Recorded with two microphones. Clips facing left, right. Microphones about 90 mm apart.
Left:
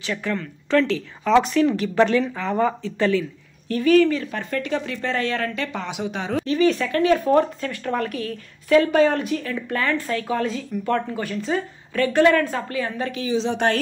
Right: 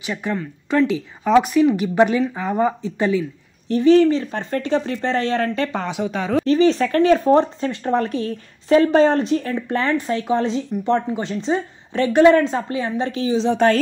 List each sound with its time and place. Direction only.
0.0 s speech: 20° right (ahead or behind); by 13.7 s 40° right (ahead or behind)